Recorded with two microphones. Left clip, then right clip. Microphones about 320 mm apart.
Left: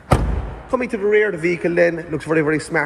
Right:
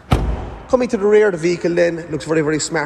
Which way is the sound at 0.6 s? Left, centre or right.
Centre.